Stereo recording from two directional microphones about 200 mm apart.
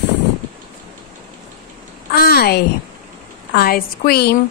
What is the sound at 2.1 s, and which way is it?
A woman's voice, 50° left (ahead or behind).